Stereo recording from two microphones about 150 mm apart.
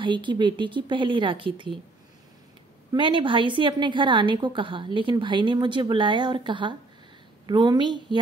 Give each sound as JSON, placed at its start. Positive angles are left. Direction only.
{"t": 0.0, "sound": "a woman's voice", "side_deg": -30}
{"t": 2.9, "sound": "a woman's voice", "side_deg": -30}